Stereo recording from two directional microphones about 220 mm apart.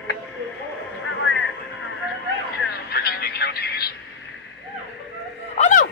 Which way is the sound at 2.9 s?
45° left (ahead or behind).